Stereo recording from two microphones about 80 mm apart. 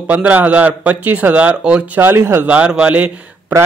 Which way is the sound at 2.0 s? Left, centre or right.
Right.